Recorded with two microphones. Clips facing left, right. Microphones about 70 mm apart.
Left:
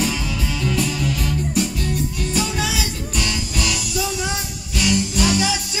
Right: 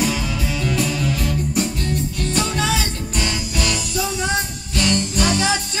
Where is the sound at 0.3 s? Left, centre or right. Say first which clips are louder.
Right 1 dB; right.